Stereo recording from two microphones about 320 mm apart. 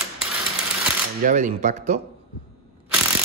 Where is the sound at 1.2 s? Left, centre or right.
Right.